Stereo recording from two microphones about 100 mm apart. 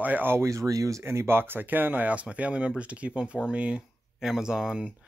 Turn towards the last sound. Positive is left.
turn(degrees=-10)  # may be behind; listen again after turning